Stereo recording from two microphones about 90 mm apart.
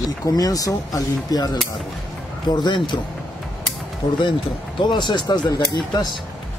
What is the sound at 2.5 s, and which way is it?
Speech, 60° left (ahead or behind).